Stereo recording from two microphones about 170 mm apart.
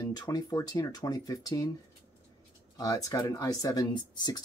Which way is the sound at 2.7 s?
20° left (ahead or behind).